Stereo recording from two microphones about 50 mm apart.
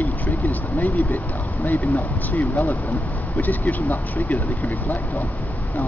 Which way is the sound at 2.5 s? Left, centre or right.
Left.